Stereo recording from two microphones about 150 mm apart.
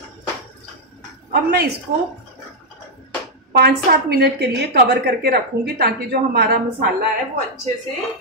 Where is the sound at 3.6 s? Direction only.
90° right.